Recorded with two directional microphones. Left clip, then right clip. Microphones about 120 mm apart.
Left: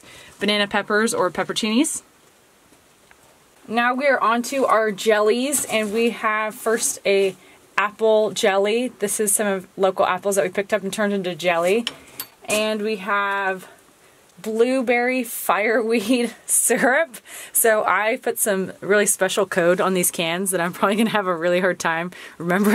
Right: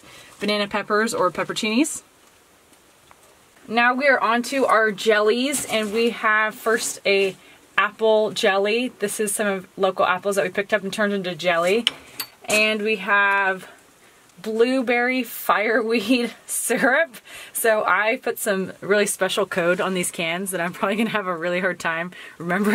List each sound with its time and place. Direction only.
0.4 s speech: 45° left (ahead or behind)
3.6 s speech: 20° left (ahead or behind)
14.4 s speech: 20° left (ahead or behind); by 22.7 s 40° left (ahead or behind)